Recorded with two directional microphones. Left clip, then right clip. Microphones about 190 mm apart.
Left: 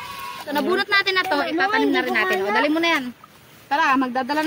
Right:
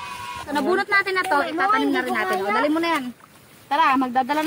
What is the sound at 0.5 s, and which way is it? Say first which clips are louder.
Speech: even; 10° right (ahead or behind).